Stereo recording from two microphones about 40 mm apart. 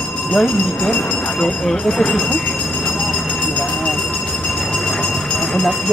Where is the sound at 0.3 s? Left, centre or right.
Left.